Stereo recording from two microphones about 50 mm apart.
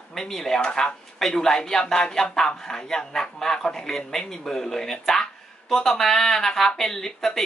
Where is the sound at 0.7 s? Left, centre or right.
Left.